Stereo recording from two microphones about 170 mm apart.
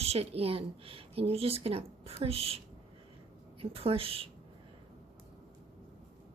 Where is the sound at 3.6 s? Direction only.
35° right (ahead or behind).